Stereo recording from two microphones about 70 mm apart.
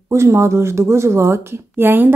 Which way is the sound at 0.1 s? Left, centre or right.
Right.